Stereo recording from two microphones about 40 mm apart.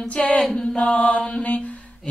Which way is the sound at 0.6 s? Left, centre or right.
Left.